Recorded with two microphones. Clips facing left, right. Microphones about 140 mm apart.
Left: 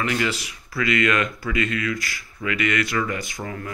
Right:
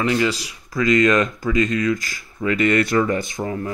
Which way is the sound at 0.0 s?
25° right (ahead or behind).